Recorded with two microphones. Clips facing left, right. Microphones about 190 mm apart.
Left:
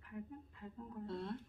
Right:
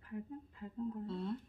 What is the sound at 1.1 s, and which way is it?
Speech, centre (ahead or behind).